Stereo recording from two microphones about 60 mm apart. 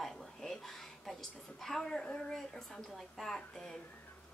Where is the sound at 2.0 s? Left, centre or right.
Centre.